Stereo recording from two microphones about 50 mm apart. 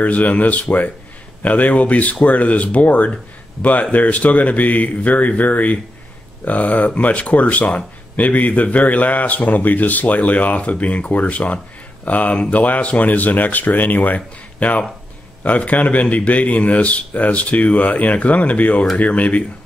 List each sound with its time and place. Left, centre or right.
0.0 s speech: left